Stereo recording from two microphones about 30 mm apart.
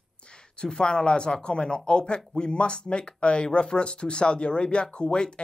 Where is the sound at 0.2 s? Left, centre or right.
Left.